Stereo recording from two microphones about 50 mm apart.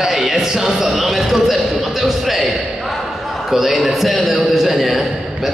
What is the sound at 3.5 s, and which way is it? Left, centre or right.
A man's voice, centre.